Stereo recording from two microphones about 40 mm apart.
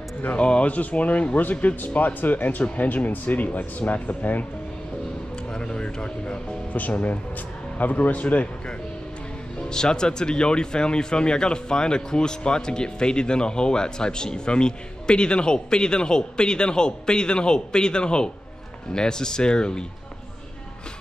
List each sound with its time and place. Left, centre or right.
0.4 s speech: left
5.5 s a sound: left
6.7 s speech: left
9.7 s speech: centre